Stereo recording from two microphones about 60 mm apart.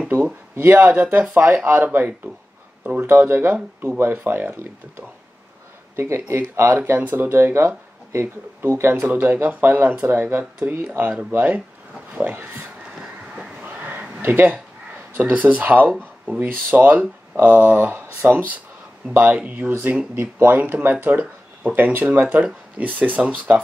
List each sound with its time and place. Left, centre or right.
0.1 s speech: right
5.9 s speech: right
9.0 s speech: right
13.0 s vehicle: centre
14.2 s speech: right
21.7 s speech: right
22.2 s speech: right